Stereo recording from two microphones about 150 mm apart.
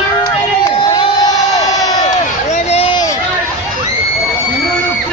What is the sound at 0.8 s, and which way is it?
Crowd, 30° left (ahead or behind).